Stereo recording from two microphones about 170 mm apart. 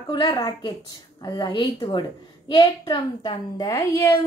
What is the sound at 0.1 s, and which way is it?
A child's voice, 25° left (ahead or behind).